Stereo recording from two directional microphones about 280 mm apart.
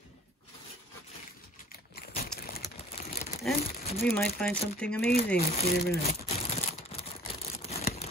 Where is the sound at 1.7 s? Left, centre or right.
Left.